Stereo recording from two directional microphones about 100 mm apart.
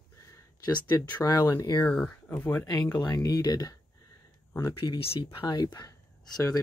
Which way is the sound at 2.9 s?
30° left (ahead or behind).